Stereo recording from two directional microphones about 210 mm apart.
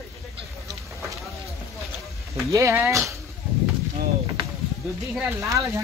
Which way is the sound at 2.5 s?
10° right (ahead or behind).